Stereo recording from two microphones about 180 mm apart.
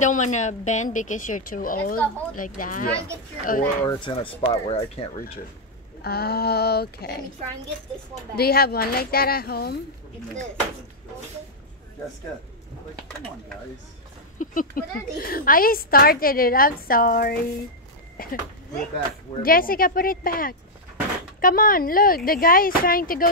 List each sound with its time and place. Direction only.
0.0 s a woman's voice: 40° left (ahead or behind)
3.8 s speech: 30° left (ahead or behind)
6.0 s a woman's voice: 60° left (ahead or behind)
8.4 s a woman's voice: 60° left (ahead or behind)
14.4 s a woman's voice: 50° left (ahead or behind)
19.4 s a woman's voice: 55° left (ahead or behind)